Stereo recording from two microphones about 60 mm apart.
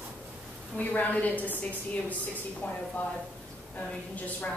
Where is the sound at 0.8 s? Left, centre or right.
Left.